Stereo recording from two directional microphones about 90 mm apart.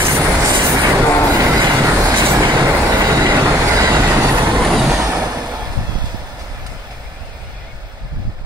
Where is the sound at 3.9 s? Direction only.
25° right (ahead or behind).